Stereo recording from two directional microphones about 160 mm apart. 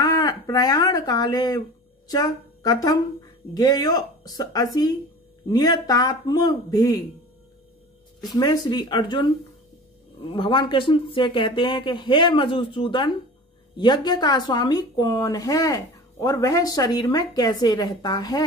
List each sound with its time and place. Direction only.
0.0 s speech: 25° left (ahead or behind)
8.3 s speech: 25° left (ahead or behind)
10.3 s speech: 30° left (ahead or behind)